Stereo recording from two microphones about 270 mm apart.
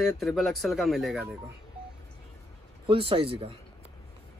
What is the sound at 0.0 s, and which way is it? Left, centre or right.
Speech, centre.